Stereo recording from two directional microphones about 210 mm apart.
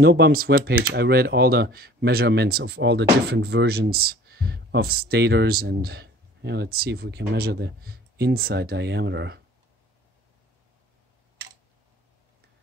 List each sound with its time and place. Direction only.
0.0 s speech: 50° right (ahead or behind)